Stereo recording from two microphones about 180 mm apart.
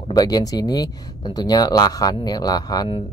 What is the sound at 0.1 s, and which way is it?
Speech, 20° left (ahead or behind).